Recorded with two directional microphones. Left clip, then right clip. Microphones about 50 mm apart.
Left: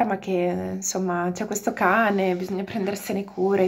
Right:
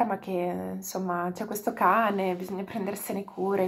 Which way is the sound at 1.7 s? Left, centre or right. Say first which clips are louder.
Left 3 dB; left.